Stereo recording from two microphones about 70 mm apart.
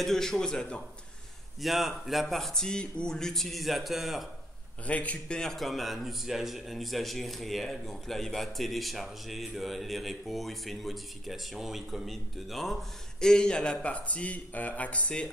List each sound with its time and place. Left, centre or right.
0.0 s a man's voice: centre
1.6 s a man's voice: centre
4.8 s a man's voice: centre